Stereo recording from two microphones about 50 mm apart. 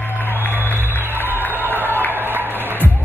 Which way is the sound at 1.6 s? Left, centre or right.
Right.